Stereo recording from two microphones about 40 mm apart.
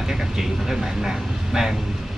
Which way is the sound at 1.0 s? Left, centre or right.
Centre.